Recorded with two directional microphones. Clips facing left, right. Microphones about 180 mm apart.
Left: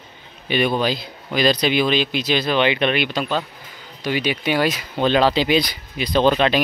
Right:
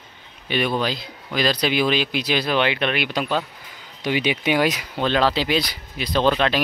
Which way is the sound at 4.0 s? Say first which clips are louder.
Even; 20° right (ahead or behind).